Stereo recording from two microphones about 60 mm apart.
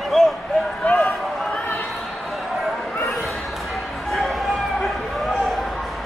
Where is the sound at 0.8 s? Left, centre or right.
Left.